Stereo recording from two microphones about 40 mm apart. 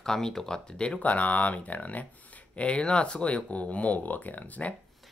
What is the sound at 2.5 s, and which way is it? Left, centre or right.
Speech, left.